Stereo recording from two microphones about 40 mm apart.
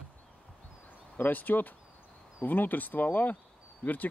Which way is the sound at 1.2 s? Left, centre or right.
Left.